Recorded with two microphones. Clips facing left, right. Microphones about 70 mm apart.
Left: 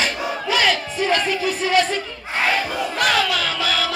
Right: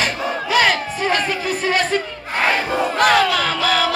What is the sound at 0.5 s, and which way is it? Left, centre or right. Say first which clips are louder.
Crowd: right 3 dB; right.